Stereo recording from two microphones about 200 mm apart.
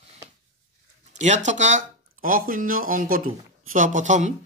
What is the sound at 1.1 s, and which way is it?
Speech, 35° right (ahead or behind).